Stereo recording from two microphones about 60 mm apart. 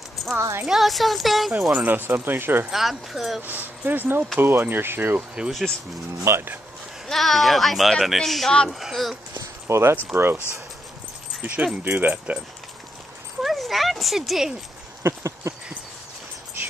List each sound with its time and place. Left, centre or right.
0.4 s speech: right
0.7 s speech: centre
1.8 s speech: right
2.7 s speech: centre
3.4 s speech: right
5.5 s speech: centre
6.2 s speech: right
7.1 s speech: centre
9.7 s speech: right
11.4 s speech: right
13.4 s speech: centre
15.0 s a sound: right